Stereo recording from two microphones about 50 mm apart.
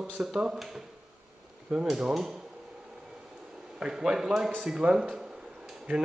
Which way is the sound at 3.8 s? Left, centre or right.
Centre.